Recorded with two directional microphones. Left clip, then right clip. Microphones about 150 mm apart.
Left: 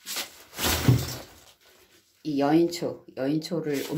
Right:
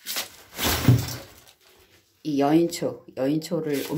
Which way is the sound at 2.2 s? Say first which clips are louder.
Right 2 dB; 15° right (ahead or behind).